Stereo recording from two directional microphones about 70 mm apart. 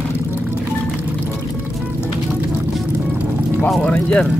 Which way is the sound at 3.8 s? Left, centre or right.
Centre.